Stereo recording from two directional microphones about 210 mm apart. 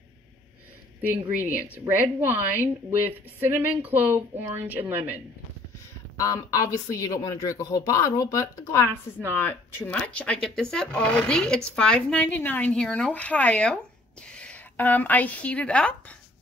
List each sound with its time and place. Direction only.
1.4 s a woman's voice: 10° right (ahead or behind)
6.1 s a woman's voice: 15° left (ahead or behind)